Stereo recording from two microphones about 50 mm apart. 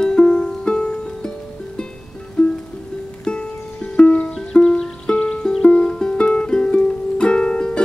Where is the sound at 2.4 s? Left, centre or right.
Centre.